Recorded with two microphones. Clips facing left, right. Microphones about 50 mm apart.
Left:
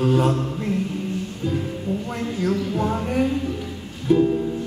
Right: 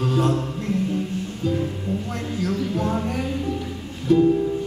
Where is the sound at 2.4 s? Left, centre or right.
Centre.